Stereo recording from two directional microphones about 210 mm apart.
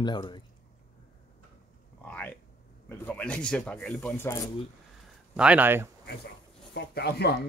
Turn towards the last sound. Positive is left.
turn(degrees=50)  # may be behind; listen again after turning